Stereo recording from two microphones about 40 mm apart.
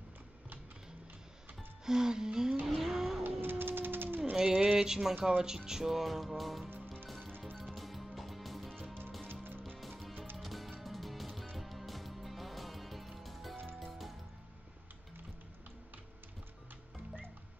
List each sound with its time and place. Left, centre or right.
1.9 s music: centre
2.6 s vehicle: centre
3.3 s cat: right
4.4 s speech: right
5.7 s music: centre
9.3 s music: right
9.8 s music: centre